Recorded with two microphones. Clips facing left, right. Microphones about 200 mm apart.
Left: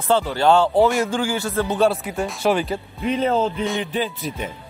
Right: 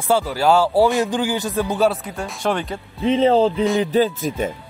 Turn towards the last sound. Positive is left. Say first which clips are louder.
# right 6 dB
turn(degrees=-45)  # may be behind; listen again after turning